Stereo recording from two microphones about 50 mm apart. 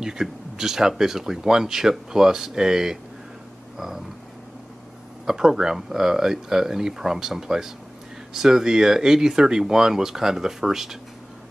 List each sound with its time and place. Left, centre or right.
0.0 s speech: centre
3.7 s a sound: centre
5.2 s speech: centre